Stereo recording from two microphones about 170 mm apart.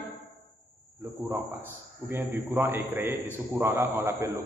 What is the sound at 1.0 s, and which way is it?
Cricket, 15° right (ahead or behind).